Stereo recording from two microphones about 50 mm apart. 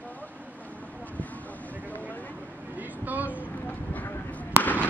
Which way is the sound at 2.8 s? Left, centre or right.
Right.